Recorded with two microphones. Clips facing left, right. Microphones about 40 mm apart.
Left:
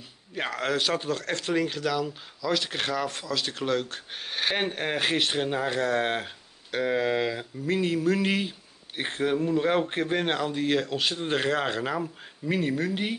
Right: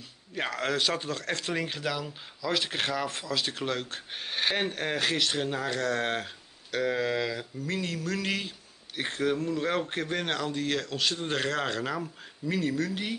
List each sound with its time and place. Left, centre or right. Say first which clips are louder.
0.3 s speech: left 2 dB; centre
4.6 s speech: left 2 dB; centre